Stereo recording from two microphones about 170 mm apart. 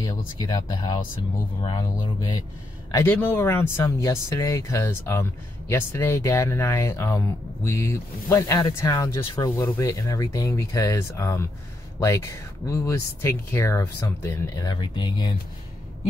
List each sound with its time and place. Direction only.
0.4 s speech: 20° left (ahead or behind)
2.9 s speech: 15° left (ahead or behind)